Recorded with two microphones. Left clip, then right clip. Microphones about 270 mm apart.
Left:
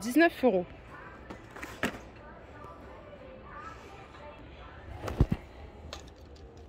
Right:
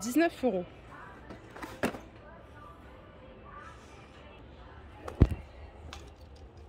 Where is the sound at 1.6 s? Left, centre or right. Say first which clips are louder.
Even; centre.